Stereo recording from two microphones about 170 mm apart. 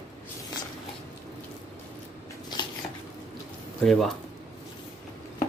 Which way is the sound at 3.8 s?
Centre (ahead or behind).